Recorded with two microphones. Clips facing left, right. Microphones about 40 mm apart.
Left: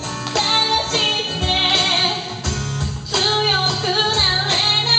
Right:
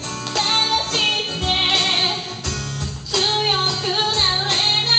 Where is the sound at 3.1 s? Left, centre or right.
Centre.